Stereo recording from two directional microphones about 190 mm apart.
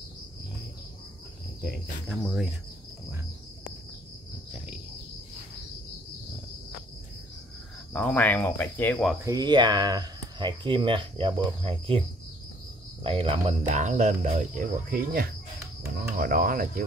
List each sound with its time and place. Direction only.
1.6 s cricket: 5° right (ahead or behind)
7.9 s speech: 10° left (ahead or behind)
9.2 s speech: 20° right (ahead or behind)
13.0 s speech: 30° right (ahead or behind); by 16.8 s 45° right (ahead or behind)